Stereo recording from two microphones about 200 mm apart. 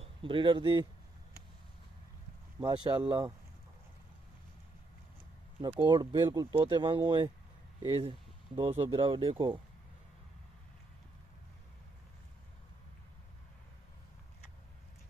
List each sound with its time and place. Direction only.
0.0 s speech: 25° right (ahead or behind)
2.6 s speech: 20° right (ahead or behind)
5.6 s speech: 25° right (ahead or behind)